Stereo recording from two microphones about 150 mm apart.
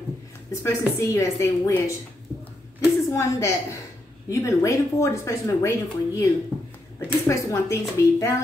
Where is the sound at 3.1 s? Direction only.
20° left (ahead or behind).